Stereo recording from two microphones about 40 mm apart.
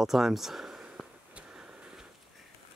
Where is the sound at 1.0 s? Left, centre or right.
Centre.